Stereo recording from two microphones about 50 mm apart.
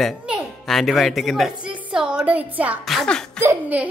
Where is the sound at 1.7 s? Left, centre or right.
Right.